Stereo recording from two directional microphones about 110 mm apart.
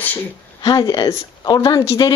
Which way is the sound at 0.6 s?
35° left (ahead or behind).